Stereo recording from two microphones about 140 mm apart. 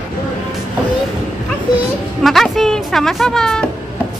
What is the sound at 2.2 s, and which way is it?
A woman's voice, centre (ahead or behind).